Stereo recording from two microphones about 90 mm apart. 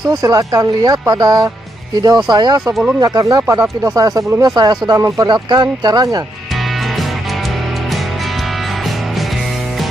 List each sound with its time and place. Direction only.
0.1 s speech: 40° right (ahead or behind)